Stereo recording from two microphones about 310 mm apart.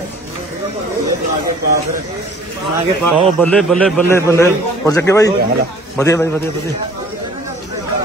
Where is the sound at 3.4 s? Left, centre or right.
Centre.